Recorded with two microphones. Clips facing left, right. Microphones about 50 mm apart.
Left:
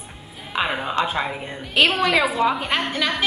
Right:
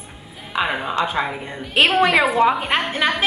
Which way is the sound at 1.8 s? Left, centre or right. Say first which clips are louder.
Right 3 dB; centre.